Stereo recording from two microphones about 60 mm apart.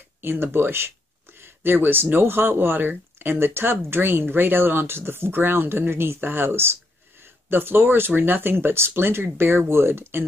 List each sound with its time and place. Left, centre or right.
0.2 s speech: right